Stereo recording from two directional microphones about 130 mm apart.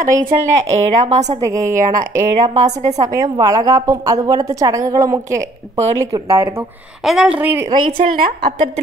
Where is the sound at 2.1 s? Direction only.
20° right (ahead or behind).